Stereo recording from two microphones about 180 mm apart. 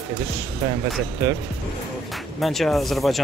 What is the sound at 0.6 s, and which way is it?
Speech, 20° right (ahead or behind).